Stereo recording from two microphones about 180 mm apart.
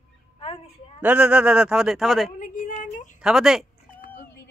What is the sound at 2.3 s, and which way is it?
Speech, 50° left (ahead or behind).